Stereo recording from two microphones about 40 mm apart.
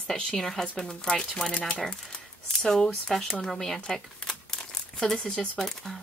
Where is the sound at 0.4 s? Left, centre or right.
Centre.